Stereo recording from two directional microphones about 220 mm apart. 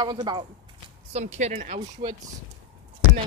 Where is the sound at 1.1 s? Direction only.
30° right (ahead or behind).